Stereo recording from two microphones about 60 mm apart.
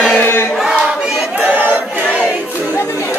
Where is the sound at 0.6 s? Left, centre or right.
Centre.